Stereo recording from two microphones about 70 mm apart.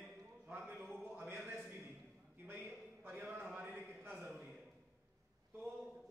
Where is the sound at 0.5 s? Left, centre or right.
Right.